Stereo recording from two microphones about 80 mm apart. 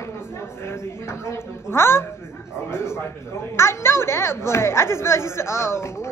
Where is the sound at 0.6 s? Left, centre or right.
Left.